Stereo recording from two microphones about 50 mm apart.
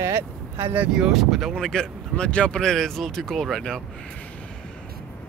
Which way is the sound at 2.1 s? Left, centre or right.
Left.